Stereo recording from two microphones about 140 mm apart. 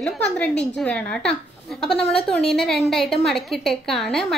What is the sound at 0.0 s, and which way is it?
A woman's voice, 10° left (ahead or behind).